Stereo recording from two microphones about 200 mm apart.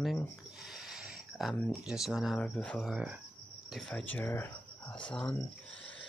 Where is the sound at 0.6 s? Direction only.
Centre (ahead or behind).